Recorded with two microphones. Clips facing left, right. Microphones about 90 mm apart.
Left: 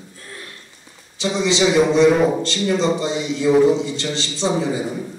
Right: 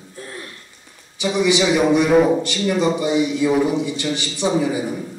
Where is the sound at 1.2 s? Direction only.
15° right (ahead or behind).